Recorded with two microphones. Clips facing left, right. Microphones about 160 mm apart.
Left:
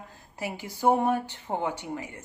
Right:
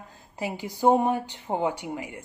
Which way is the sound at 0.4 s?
15° right (ahead or behind).